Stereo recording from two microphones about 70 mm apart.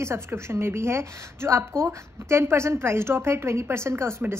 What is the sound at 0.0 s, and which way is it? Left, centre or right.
A woman's voice, right.